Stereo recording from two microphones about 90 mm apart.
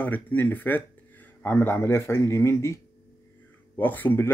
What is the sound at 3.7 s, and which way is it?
Speech, 20° left (ahead or behind).